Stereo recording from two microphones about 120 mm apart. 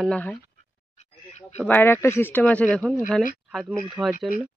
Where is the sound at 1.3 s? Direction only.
65° left (ahead or behind).